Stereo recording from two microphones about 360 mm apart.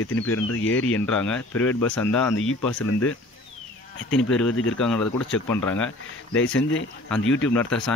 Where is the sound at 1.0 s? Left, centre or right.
Centre.